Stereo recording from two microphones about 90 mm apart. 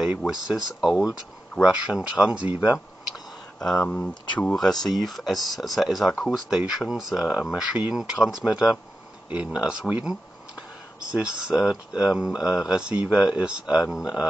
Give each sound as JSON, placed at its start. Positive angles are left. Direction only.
{"t": 0.3, "sound": "speech", "side_deg": -5}
{"t": 3.5, "sound": "speech", "side_deg": 5}